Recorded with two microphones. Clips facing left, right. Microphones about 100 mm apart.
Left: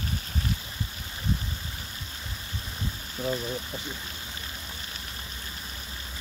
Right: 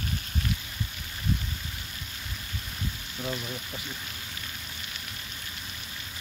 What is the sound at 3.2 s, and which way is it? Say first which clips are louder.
Speech: left 5 dB; 30° left (ahead or behind).